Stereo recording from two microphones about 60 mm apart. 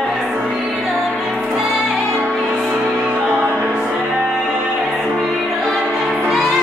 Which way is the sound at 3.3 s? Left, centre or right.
Right.